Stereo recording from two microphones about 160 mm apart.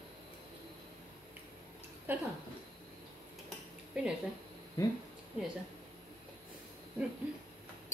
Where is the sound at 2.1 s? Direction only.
15° right (ahead or behind).